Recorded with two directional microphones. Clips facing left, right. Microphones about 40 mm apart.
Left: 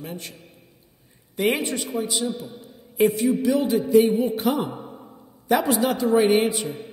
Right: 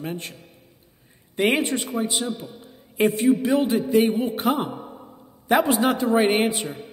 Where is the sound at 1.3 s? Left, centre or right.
Right.